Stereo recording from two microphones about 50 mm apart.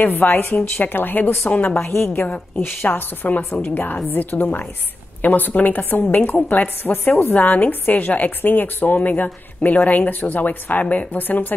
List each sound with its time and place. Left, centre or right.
0.0 s a woman's voice: left
1.8 s a woman's voice: left
2.1 s a woman's voice: left
2.5 s a woman's voice: left